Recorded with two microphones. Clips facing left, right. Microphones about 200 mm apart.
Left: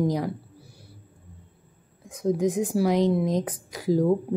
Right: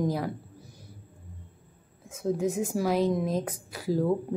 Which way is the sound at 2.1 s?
15° left (ahead or behind).